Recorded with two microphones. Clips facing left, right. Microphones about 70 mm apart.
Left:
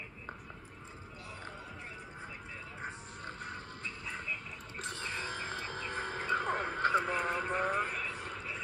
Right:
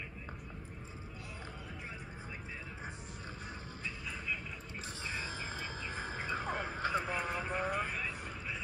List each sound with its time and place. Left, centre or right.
4.8 s music: left